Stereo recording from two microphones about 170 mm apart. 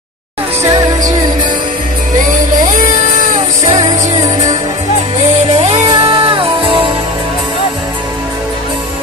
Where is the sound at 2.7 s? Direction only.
50° right (ahead or behind).